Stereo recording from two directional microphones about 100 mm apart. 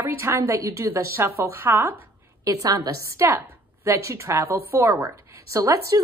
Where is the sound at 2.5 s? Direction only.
35° right (ahead or behind).